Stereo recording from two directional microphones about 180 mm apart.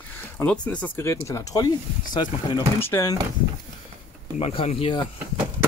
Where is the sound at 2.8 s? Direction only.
15° left (ahead or behind).